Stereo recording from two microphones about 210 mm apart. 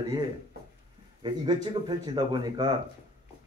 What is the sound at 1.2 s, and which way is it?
Speech, 20° right (ahead or behind).